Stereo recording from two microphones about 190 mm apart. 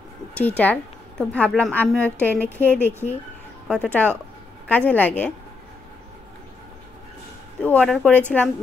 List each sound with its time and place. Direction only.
0.4 s a woman's voice: 10° left (ahead or behind)
7.6 s a woman's voice: 5° left (ahead or behind)